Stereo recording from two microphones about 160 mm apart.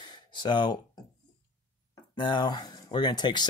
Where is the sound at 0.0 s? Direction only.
30° left (ahead or behind).